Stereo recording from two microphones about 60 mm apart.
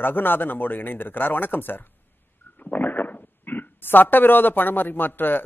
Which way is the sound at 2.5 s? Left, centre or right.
Left.